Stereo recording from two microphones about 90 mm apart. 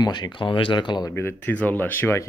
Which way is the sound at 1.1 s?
25° left (ahead or behind).